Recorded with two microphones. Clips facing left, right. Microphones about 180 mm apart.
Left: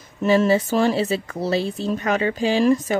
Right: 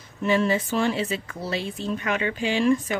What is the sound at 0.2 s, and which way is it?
Speech, 40° left (ahead or behind).